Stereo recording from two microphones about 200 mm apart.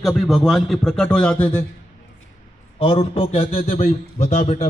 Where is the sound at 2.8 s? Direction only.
30° left (ahead or behind).